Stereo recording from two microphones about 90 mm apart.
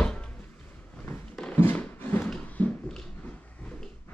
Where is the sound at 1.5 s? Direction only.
20° left (ahead or behind).